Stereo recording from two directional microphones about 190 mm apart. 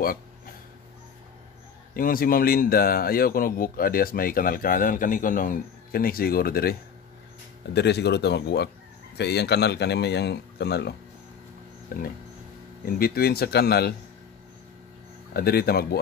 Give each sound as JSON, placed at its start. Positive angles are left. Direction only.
{"t": 2.0, "sound": "speech", "side_deg": 50}
{"t": 12.8, "sound": "speech", "side_deg": 50}
{"t": 15.3, "sound": "speech", "side_deg": 55}